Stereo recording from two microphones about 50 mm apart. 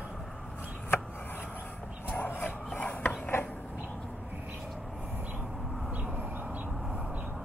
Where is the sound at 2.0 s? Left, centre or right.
Left.